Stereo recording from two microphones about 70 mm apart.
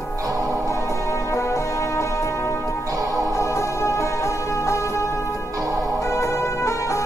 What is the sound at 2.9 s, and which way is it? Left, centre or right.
Music, right.